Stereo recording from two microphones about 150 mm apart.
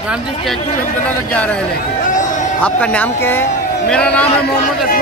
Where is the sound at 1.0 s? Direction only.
10° left (ahead or behind).